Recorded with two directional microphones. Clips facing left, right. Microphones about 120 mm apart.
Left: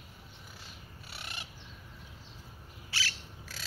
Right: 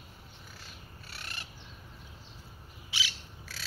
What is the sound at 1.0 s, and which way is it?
Bird, 15° left (ahead or behind).